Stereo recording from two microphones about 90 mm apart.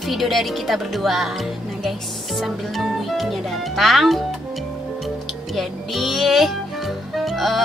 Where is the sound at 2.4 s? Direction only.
Centre (ahead or behind).